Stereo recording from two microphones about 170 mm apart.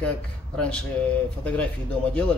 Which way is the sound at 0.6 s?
5° left (ahead or behind).